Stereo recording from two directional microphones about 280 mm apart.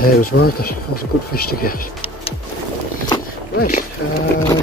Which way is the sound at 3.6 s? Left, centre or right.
Left.